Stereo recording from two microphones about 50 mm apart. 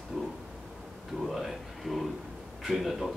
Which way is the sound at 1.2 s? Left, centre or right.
Centre.